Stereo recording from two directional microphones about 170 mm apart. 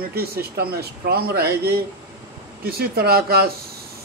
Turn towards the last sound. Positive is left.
turn(degrees=-65)  # may be behind; listen again after turning